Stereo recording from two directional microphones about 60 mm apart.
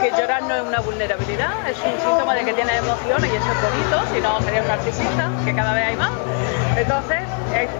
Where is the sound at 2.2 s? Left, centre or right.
Centre.